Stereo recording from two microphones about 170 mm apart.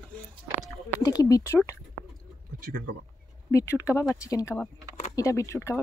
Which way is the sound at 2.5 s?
55° right (ahead or behind).